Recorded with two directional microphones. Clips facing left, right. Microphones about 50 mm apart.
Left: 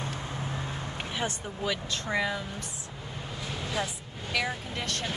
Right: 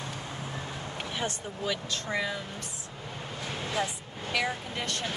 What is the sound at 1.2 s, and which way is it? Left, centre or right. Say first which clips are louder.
Speech: left 1 dB; left.